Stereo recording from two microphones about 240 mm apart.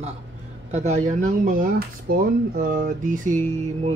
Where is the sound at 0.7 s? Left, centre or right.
Right.